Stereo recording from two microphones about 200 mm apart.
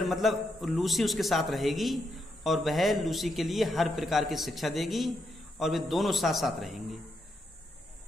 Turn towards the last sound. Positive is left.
turn(degrees=0)  # may be behind; listen again after turning